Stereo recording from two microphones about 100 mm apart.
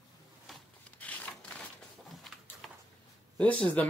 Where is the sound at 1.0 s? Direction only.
15° left (ahead or behind).